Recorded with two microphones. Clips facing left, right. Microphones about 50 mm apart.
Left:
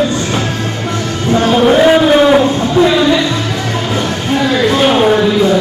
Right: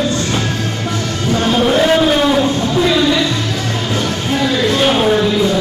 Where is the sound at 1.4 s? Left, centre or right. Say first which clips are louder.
Left 5 dB; centre.